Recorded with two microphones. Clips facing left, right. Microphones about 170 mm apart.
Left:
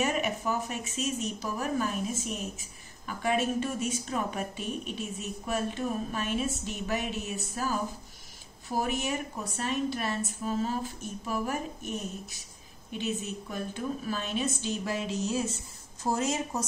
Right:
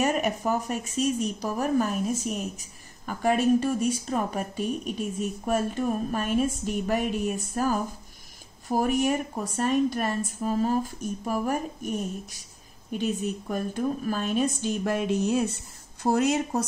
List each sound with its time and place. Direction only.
0.0 s a woman's voice: 40° right (ahead or behind); by 16.6 s 65° right (ahead or behind)